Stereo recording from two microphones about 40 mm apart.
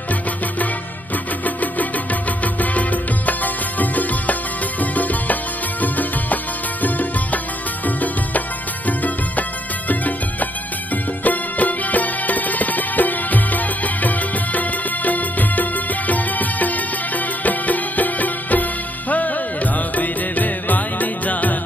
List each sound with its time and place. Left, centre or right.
1.4 s music: left